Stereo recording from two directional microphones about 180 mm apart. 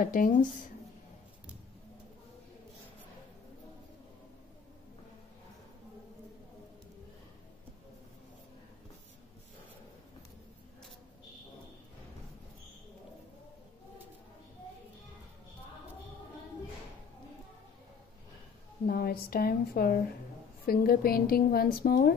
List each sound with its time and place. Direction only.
0.0 s speech: 50° left (ahead or behind)
18.9 s a woman's voice: 60° left (ahead or behind)